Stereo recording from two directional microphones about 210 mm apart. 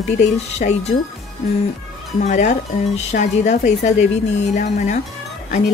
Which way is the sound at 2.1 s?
35° left (ahead or behind).